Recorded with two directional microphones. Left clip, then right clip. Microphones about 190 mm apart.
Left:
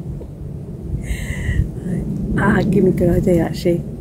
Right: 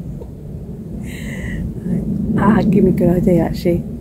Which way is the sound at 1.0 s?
Centre (ahead or behind).